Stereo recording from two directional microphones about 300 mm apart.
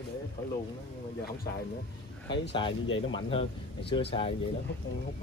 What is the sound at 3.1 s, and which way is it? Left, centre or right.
Speech, centre.